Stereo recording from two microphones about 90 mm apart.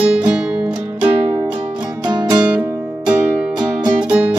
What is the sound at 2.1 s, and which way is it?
Music, 55° right (ahead or behind).